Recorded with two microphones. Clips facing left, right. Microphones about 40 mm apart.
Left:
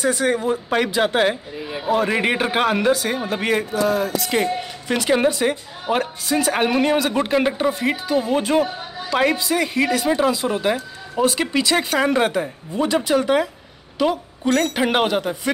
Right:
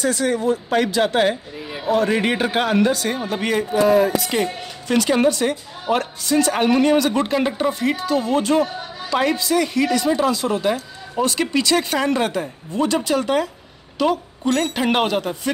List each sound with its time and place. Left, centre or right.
0.0 s a woman's voice: left
3.7 s music: right
4.2 s a woman's voice: centre